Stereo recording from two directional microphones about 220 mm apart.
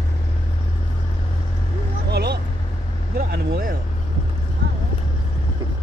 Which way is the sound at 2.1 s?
45° right (ahead or behind).